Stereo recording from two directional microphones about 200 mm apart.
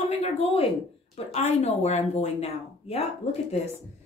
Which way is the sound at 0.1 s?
30° left (ahead or behind).